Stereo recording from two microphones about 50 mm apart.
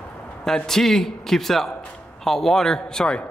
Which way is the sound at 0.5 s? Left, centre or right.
Centre.